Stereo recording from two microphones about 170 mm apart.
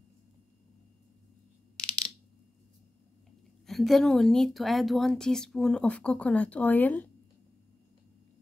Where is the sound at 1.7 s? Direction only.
5° left (ahead or behind).